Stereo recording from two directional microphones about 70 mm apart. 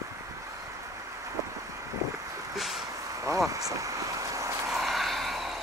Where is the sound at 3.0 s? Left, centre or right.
Right.